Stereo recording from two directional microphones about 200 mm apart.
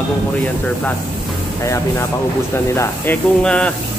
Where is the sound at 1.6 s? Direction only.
15° left (ahead or behind).